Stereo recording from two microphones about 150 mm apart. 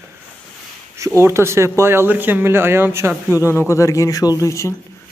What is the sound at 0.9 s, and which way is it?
A man's voice, 20° right (ahead or behind).